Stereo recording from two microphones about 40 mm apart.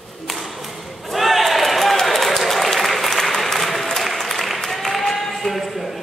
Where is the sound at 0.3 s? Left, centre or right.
Centre.